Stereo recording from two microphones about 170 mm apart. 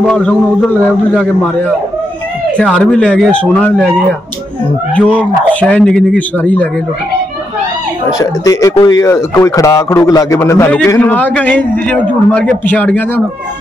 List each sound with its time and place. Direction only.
0.0 s a man's voice: 5° left (ahead or behind)
4.9 s speech: 5° left (ahead or behind)
8.2 s speech: 20° left (ahead or behind)